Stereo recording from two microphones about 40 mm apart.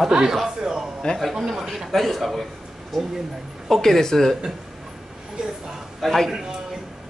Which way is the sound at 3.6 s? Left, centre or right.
Centre.